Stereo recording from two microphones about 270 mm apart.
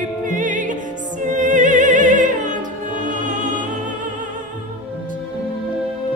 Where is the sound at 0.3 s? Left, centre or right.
Right.